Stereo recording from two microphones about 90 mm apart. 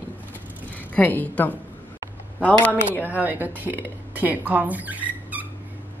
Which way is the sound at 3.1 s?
20° right (ahead or behind).